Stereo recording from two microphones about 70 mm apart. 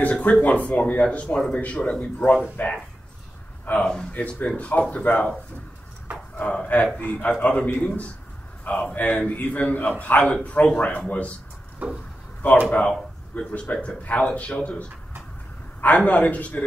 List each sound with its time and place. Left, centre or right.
0.0 s speech: left
6.4 s speech: centre
11.8 s a sound: centre
12.4 s speech: centre